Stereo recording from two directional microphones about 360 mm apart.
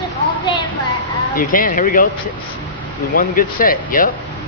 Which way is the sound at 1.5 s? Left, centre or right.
Left.